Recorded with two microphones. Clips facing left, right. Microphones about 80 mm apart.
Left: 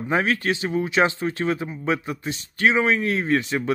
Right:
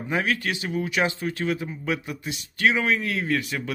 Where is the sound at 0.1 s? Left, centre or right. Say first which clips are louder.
Left 4 dB; left.